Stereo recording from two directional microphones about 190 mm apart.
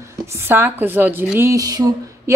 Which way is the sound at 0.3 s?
10° right (ahead or behind).